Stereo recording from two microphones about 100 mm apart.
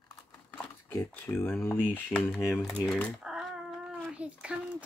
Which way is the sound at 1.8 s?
15° left (ahead or behind).